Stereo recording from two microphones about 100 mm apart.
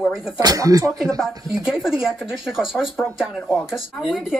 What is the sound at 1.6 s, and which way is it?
Speech, 5° right (ahead or behind).